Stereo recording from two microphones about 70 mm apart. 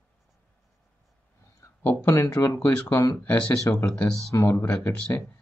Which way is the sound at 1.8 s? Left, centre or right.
Left.